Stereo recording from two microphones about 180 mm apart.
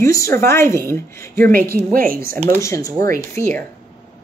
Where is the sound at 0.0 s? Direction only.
15° left (ahead or behind).